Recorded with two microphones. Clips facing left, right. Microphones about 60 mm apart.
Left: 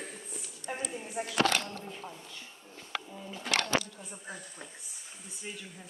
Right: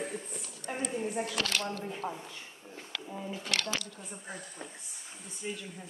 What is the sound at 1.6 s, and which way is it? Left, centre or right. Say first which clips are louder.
Speech: right 6 dB; right.